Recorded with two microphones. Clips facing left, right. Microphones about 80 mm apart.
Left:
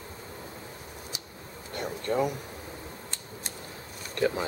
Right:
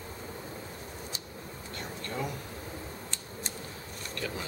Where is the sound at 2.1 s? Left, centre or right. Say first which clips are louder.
Left 10 dB; left.